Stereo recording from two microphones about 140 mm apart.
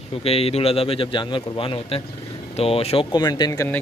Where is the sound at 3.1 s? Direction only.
30° left (ahead or behind).